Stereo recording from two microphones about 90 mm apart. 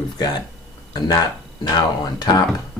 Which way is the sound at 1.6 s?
50° left (ahead or behind).